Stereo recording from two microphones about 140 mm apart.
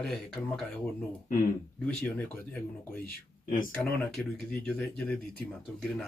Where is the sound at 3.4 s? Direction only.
75° left (ahead or behind).